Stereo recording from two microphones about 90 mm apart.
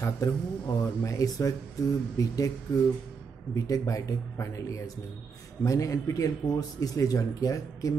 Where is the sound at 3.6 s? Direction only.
40° left (ahead or behind).